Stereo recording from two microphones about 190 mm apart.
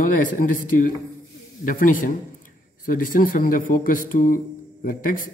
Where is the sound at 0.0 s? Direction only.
45° left (ahead or behind).